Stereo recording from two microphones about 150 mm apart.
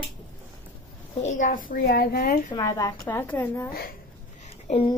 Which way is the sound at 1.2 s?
55° left (ahead or behind).